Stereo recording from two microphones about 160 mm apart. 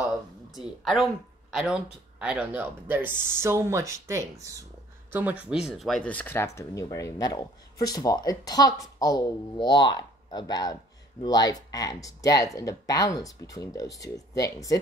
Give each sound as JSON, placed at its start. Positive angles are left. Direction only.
{"t": 0.6, "sound": "speech", "side_deg": 0}